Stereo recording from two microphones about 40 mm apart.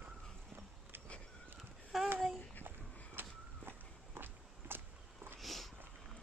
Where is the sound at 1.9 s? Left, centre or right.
Centre.